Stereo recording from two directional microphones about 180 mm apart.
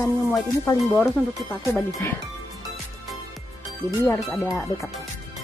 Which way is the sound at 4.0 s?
15° left (ahead or behind).